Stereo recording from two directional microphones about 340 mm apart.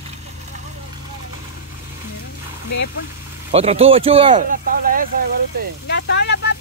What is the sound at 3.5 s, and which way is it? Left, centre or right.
Speech, centre.